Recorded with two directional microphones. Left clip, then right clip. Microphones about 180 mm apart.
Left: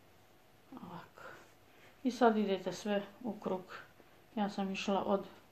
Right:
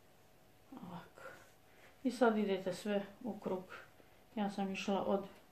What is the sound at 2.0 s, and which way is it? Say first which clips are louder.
Speech: left 3 dB; 30° left (ahead or behind).